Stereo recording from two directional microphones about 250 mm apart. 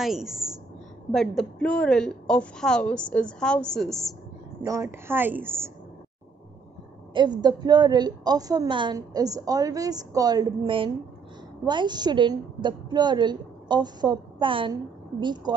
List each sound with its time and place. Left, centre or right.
0.0 s a woman's voice: centre
4.6 s a woman's voice: centre
7.2 s a woman's voice: centre